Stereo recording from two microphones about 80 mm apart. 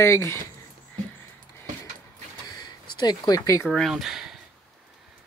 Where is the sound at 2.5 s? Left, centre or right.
Left.